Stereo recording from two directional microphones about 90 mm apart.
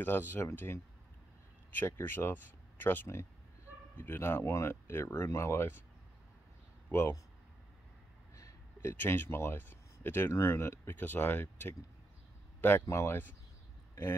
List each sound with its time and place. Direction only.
0.0 s speech: 25° left (ahead or behind)
1.8 s speech: 25° left (ahead or behind)
6.9 s speech: 30° left (ahead or behind)
8.4 s speech: 25° left (ahead or behind)
12.9 s speech: 25° left (ahead or behind)